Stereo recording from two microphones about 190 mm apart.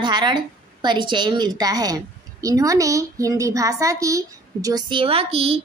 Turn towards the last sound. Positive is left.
turn(degrees=-30)  # may be behind; listen again after turning